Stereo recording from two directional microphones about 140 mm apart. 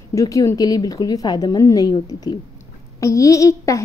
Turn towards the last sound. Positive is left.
turn(degrees=20)  # may be behind; listen again after turning